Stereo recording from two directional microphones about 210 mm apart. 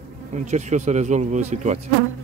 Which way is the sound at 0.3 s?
35° right (ahead or behind).